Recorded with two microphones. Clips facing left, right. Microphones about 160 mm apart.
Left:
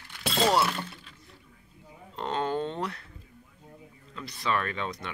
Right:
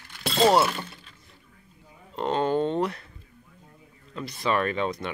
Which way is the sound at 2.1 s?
10° right (ahead or behind).